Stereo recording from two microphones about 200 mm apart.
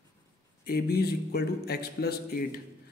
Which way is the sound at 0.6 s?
50° left (ahead or behind).